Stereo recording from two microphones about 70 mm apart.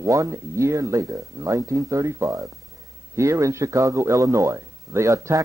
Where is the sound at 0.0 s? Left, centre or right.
Right.